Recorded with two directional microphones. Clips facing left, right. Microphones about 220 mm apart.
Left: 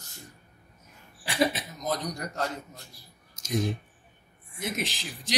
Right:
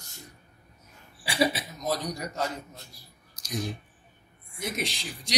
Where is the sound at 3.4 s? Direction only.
25° left (ahead or behind).